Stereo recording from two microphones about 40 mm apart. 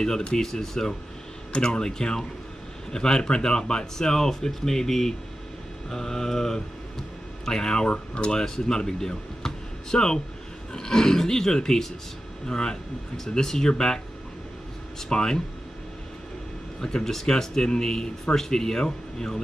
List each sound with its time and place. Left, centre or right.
0.3 s speech: centre
15.0 s speech: centre
16.8 s speech: centre